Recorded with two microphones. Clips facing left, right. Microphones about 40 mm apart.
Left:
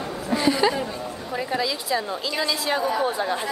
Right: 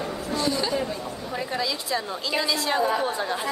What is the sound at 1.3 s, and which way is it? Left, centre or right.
A woman's voice, centre.